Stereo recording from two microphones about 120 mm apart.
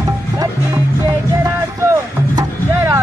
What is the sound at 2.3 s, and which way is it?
Music, 30° right (ahead or behind).